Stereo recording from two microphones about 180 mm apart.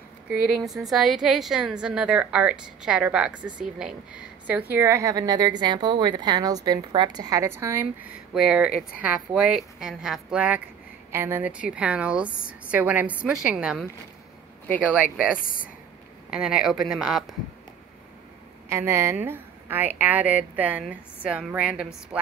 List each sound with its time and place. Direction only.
0.5 s a woman's voice: 5° right (ahead or behind)
15.3 s speech: 50° left (ahead or behind)
16.3 s a woman's voice: 5° right (ahead or behind)
18.7 s a woman's voice: 15° right (ahead or behind)